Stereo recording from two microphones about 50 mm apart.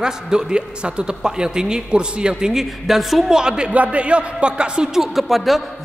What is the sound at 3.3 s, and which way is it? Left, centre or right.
A man's voice, centre.